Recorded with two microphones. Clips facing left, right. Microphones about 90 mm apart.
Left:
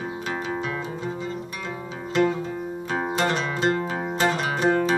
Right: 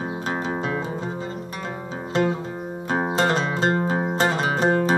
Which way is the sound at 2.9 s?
35° right (ahead or behind).